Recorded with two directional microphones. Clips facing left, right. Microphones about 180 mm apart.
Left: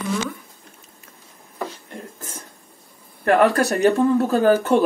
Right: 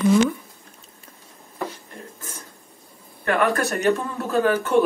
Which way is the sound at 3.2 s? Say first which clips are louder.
Left 5 dB; 35° left (ahead or behind).